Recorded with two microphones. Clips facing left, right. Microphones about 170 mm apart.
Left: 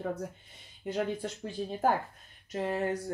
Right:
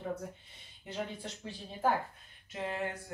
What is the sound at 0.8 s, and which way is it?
Speech, 50° left (ahead or behind).